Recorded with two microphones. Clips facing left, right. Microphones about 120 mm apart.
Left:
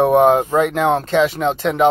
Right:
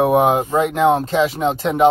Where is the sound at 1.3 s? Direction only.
35° right (ahead or behind).